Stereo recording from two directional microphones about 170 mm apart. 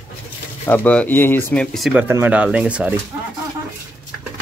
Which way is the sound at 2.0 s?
10° right (ahead or behind).